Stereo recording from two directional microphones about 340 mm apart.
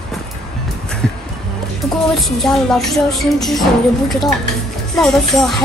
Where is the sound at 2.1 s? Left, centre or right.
Centre.